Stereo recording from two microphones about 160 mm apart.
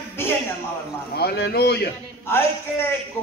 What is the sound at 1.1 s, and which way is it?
Speech, 85° left.